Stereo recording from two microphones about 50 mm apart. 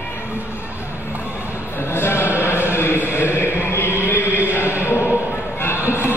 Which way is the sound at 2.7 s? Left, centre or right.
Left.